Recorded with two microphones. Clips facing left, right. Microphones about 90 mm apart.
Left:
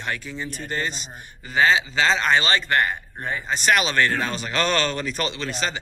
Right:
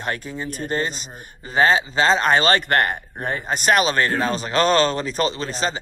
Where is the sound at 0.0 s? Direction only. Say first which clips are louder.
Right 3 dB; 45° right (ahead or behind).